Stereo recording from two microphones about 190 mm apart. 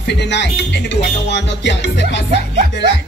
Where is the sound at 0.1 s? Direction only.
65° left (ahead or behind).